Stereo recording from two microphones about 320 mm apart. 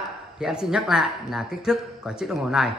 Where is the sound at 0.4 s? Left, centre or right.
Centre.